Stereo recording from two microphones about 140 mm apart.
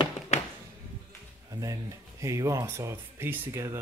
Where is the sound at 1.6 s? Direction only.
25° right (ahead or behind).